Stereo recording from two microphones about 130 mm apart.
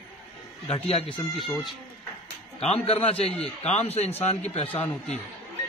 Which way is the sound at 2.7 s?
50° left (ahead or behind).